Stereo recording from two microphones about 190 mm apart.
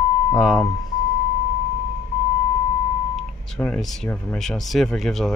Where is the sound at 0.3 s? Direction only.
5° left (ahead or behind).